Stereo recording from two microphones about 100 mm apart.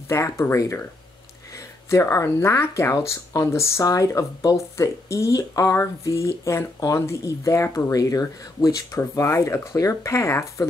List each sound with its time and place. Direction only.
0.1 s speech: 30° left (ahead or behind)
1.9 s speech: 30° left (ahead or behind)